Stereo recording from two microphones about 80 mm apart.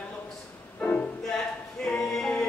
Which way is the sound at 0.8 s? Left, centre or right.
Centre.